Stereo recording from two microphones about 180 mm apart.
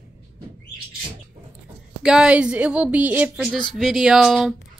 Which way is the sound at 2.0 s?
5° right (ahead or behind).